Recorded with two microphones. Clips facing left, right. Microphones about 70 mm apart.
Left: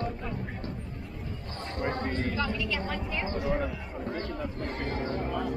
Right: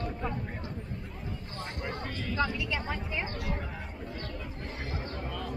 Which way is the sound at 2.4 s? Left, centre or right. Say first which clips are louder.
Even; centre.